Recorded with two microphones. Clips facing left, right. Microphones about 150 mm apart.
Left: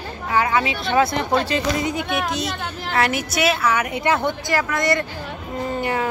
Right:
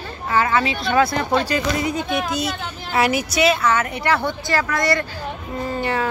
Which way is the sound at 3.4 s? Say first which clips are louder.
Right 2 dB; 5° left (ahead or behind).